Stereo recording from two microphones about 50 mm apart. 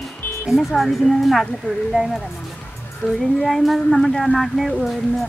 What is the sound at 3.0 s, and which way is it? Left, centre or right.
Speech, left.